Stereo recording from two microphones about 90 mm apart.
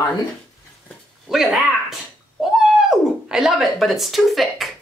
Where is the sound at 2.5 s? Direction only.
5° right (ahead or behind).